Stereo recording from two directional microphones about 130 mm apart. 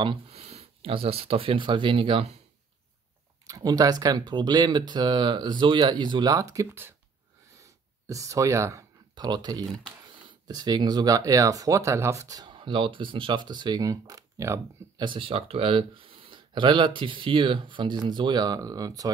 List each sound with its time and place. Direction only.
0.0 s speech: 50° right (ahead or behind)
3.4 s speech: 30° right (ahead or behind)
6.5 s speech: 20° right (ahead or behind)
7.5 s a sound: 25° right (ahead or behind)
10.4 s speech: 30° right (ahead or behind)
15.0 s speech: 40° right (ahead or behind)